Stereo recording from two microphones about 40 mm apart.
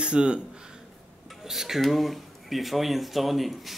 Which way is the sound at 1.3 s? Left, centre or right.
Centre.